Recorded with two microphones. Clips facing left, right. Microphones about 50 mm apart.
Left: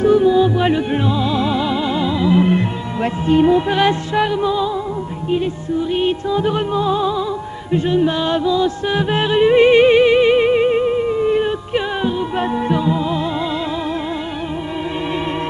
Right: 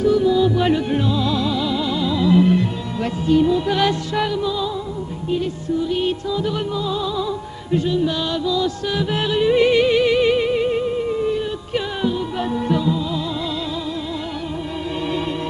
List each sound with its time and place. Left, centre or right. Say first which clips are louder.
0.0 s music: left 3 dB; left
2.5 s music: left 1 dB; left